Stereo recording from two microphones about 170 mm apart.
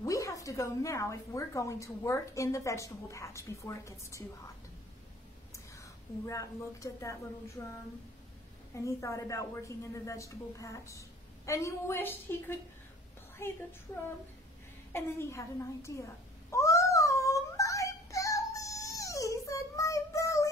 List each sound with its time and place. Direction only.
0.0 s a woman's voice: 20° left (ahead or behind)
5.5 s a woman's voice: 15° left (ahead or behind)
14.9 s cat: 15° left (ahead or behind)